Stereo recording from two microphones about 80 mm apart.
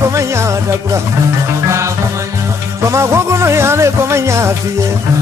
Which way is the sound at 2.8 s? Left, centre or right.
Right.